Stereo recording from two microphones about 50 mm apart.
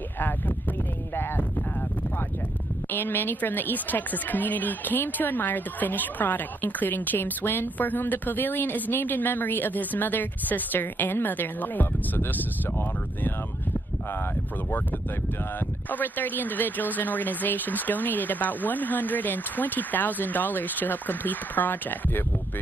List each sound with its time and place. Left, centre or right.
2.9 s a woman's voice: left
15.9 s a woman's voice: left